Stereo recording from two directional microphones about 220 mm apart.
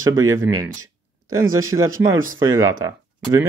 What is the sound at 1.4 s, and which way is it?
Speech, 70° right (ahead or behind).